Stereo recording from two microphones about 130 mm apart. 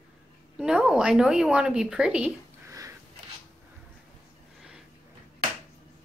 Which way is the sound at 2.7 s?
25° right (ahead or behind).